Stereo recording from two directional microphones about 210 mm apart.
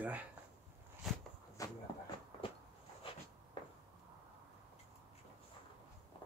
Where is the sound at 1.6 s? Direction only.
15° left (ahead or behind).